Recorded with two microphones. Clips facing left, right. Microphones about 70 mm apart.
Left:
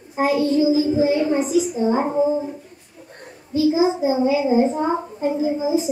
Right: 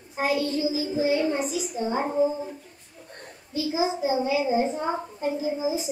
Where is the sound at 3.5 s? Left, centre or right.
Left.